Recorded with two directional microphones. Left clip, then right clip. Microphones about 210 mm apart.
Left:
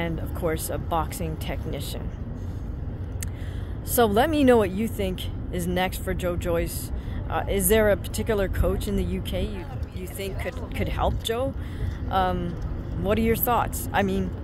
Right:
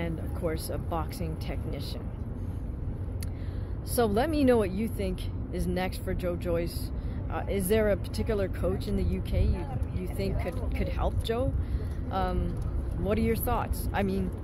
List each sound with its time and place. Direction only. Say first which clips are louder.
0.0 s speech: left 5 dB; 15° left (ahead or behind)
3.9 s a woman's voice: left 6 dB; 20° left (ahead or behind)